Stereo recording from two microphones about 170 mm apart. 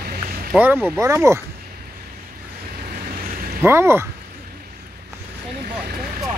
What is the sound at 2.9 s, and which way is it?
Boat, 60° right (ahead or behind).